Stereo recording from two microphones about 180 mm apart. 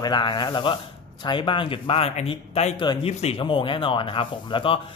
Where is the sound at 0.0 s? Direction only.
25° left (ahead or behind).